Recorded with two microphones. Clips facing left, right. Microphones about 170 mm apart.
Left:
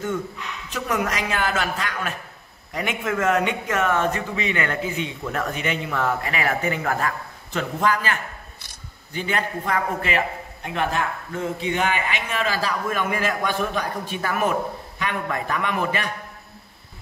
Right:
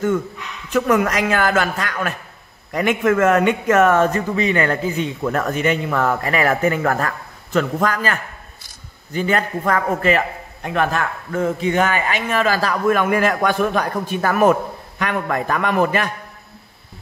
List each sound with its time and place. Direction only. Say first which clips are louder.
0.7 s a man's voice: right 8 dB; 55° right (ahead or behind)